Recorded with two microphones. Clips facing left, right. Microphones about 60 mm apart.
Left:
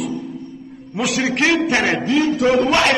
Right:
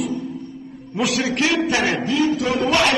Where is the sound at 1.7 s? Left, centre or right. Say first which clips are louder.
Left 2 dB; left.